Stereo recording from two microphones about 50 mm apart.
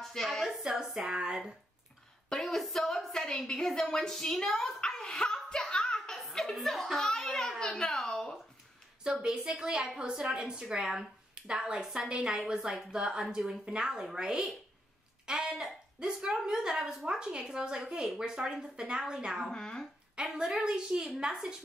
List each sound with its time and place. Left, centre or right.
0.0 s speech: centre
1.0 s a woman's voice: centre
2.2 s a sound: centre
3.5 s a woman's voice: centre
5.9 s a sound: centre
7.1 s a child's voice: centre
9.0 s a woman's voice: centre
19.5 s a child's voice: centre
20.2 s a woman's voice: centre